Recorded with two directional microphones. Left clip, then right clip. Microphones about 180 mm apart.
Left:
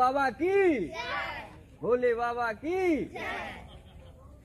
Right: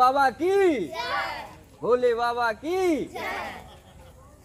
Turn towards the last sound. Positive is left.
turn(degrees=-20)  # may be behind; listen again after turning